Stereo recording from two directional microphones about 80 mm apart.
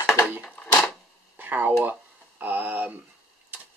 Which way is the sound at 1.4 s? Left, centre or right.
Right.